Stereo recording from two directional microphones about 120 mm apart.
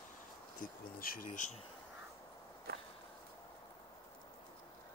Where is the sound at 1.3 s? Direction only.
90° left.